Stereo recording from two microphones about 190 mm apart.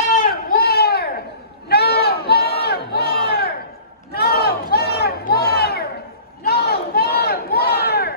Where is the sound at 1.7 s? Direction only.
55° left (ahead or behind).